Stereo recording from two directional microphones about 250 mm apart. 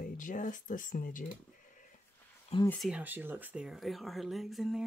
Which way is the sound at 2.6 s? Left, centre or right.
Centre.